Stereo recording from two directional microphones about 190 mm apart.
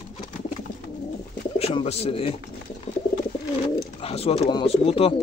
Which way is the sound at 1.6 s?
30° left (ahead or behind).